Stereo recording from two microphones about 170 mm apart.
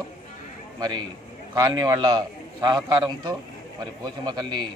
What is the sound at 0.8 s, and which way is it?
A man's voice, 25° right (ahead or behind).